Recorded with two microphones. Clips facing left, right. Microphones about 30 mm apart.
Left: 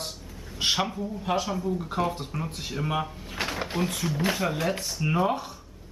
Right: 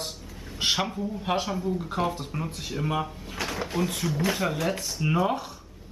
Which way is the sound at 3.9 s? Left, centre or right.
Centre.